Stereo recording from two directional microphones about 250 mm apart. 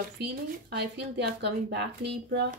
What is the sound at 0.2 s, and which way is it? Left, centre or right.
Speech, right.